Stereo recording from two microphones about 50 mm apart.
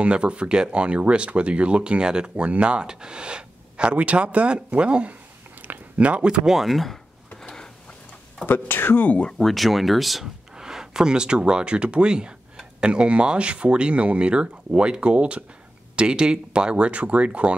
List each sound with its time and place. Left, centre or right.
0.0 s speech: right; by 7.0 s centre
7.4 s a sound: centre
8.5 s speech: left
9.0 s speech: left
9.4 s speech: centre; by 17.6 s right